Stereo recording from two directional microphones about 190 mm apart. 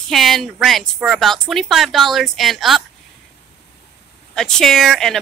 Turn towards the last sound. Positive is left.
turn(degrees=0)  # may be behind; listen again after turning